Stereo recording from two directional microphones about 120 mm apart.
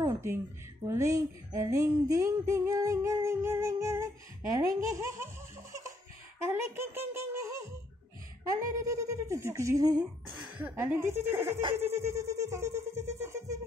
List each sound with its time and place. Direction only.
0.0 s a sound: 25° right (ahead or behind)
0.8 s speech: 25° right (ahead or behind)
6.4 s speech: 20° right (ahead or behind)
10.2 s a woman's voice: 40° right (ahead or behind)
10.8 s speech: 20° right (ahead or behind)